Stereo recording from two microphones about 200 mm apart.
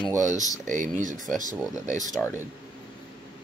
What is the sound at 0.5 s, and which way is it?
Speech, 40° right (ahead or behind).